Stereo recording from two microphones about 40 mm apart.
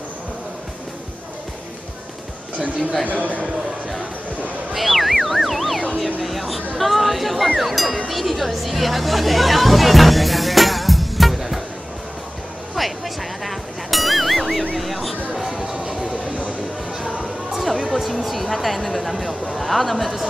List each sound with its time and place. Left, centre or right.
3.1 s a man's voice: right
4.7 s music: centre
5.9 s speech: centre
8.1 s chatter: centre
12.7 s music: centre
14.8 s a sound: centre